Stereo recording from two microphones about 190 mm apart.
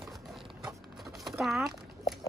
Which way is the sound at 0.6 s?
Centre (ahead or behind).